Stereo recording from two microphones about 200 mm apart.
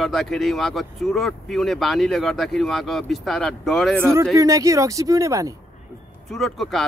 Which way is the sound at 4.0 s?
15° right (ahead or behind).